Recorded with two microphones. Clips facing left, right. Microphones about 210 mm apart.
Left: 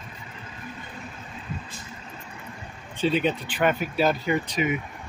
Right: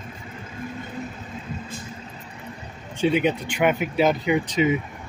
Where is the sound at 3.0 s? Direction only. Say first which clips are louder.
Right 3 dB; 15° right (ahead or behind).